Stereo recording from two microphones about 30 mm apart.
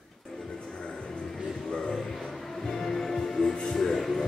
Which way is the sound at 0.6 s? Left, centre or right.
Left.